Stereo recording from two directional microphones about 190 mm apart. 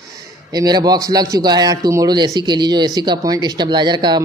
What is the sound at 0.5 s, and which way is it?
Speech, 20° right (ahead or behind).